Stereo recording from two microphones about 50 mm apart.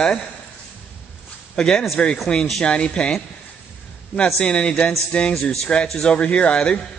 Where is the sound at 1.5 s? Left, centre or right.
Centre.